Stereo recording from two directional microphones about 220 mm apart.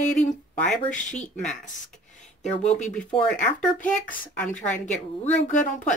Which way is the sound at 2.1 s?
30° left (ahead or behind).